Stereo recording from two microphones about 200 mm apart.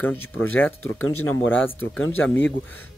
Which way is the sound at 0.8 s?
90° left.